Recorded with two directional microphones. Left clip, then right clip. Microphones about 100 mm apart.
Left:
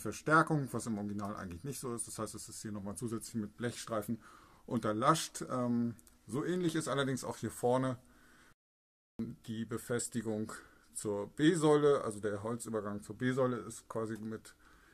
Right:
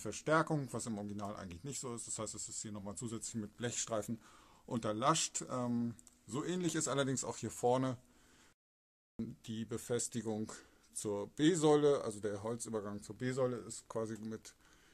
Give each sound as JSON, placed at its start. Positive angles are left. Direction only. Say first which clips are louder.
{"t": 0.0, "sound": "speech", "louder": "left 4 dB", "side_deg": -15}
{"t": 3.3, "sound": "speech", "louder": "left 1 dB", "side_deg": -35}
{"t": 4.6, "sound": "speech", "louder": "left 3 dB", "side_deg": -15}
{"t": 6.4, "sound": "speech", "louder": "left 3 dB", "side_deg": -30}
{"t": 9.5, "sound": "speech", "louder": "left 1 dB", "side_deg": -30}
{"t": 12.9, "sound": "speech", "louder": "left 3 dB", "side_deg": -10}
{"t": 13.2, "sound": "speech", "louder": "left 3 dB", "side_deg": -20}